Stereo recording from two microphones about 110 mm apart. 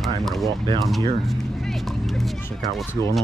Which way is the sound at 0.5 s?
40° right (ahead or behind).